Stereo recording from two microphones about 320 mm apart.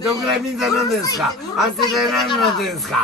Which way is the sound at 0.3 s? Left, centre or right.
Centre.